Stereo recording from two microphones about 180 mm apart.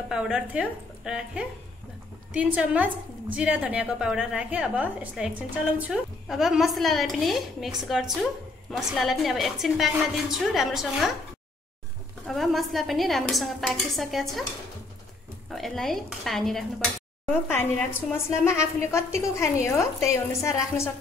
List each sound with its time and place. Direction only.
0.1 s a woman's voice: 5° right (ahead or behind)
12.3 s a woman's voice: centre (ahead or behind)
15.5 s a woman's voice: centre (ahead or behind)
17.5 s a woman's voice: 15° left (ahead or behind)